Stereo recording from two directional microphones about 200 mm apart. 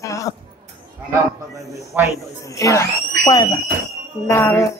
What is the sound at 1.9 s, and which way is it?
Speech, 10° right (ahead or behind).